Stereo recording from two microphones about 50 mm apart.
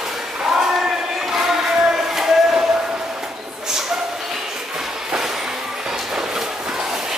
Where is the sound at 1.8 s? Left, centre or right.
Centre.